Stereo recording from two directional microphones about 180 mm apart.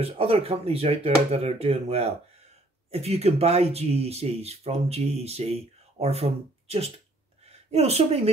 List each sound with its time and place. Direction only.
0.0 s speech: 30° right (ahead or behind)